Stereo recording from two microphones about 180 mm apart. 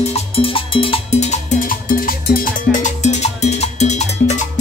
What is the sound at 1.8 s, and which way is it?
Music, 55° left (ahead or behind).